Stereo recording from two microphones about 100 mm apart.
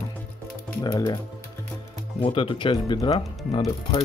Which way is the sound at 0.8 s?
45° left (ahead or behind).